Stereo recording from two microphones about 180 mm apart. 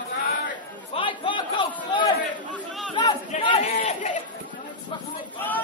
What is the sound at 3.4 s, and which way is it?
Chatter, 35° left (ahead or behind).